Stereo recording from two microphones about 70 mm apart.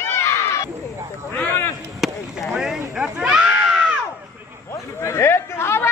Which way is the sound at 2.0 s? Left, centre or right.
Centre.